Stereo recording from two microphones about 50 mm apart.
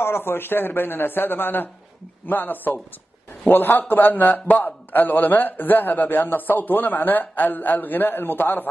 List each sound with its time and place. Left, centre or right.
0.0 s a man's voice: left